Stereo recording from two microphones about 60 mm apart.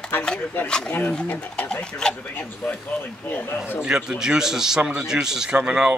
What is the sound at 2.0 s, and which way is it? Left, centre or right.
Speech, centre.